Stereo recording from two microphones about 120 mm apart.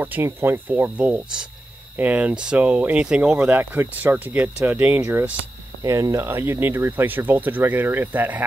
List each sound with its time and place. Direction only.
0.0 s speech: 15° right (ahead or behind)
5.8 s speech: 30° right (ahead or behind)